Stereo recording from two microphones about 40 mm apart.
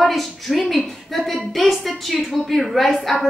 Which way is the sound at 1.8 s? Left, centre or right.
Centre.